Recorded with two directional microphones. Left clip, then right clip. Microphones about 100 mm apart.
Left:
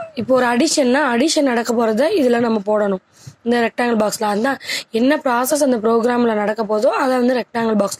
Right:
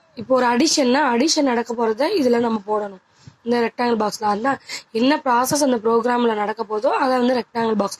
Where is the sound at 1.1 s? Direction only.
50° left (ahead or behind).